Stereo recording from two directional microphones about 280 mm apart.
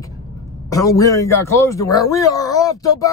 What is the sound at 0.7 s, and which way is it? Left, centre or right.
A man's voice, centre.